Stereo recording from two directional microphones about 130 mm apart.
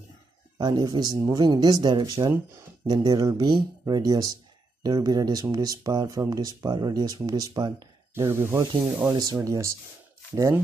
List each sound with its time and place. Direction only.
0.6 s speech: 30° right (ahead or behind)
8.1 s speech: 20° right (ahead or behind)